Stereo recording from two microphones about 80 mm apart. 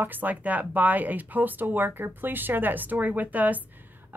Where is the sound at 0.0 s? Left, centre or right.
Right.